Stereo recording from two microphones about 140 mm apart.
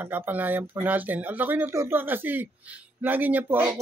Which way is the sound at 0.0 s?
15° right (ahead or behind).